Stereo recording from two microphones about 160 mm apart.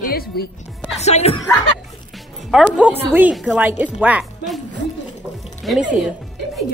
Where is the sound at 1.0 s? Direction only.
40° left (ahead or behind).